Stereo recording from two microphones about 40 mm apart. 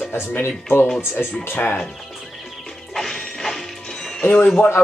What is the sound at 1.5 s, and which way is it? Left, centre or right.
Speech, left.